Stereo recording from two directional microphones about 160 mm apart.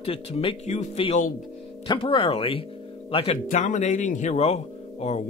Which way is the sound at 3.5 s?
50° left (ahead or behind).